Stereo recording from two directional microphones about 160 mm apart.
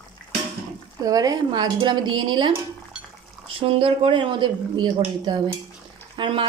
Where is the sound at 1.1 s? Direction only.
20° right (ahead or behind).